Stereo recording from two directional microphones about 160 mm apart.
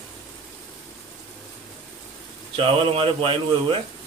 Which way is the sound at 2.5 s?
35° right (ahead or behind).